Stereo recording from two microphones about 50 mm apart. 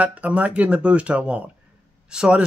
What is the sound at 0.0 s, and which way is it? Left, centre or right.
Speech, right.